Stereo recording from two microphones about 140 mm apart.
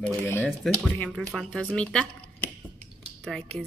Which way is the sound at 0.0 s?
15° left (ahead or behind).